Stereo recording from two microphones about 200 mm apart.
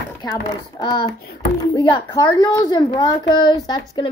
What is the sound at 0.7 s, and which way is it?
A woman's voice, 20° left (ahead or behind).